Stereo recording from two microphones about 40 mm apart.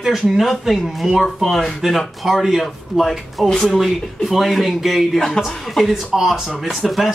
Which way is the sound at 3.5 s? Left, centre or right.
Centre.